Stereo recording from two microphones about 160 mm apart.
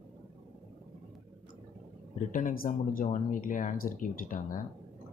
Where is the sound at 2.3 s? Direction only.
60° left (ahead or behind).